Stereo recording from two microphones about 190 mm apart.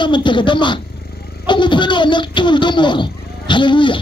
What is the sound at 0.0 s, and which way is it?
Speech, 25° left (ahead or behind).